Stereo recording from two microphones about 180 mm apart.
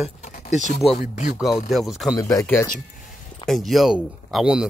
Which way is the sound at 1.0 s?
40° left (ahead or behind).